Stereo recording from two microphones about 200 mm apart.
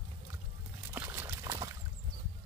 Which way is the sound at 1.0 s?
15° right (ahead or behind).